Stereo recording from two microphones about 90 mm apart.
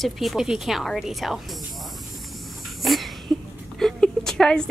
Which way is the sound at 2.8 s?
Centre (ahead or behind).